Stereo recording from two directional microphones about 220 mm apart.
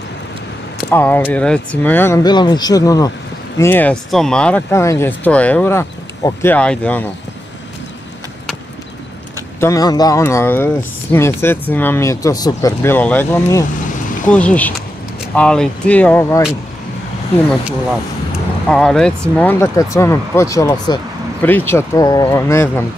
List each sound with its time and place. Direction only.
0.9 s speech: 10° left (ahead or behind)
9.6 s speech: 15° left (ahead or behind)
18.7 s speech: centre (ahead or behind)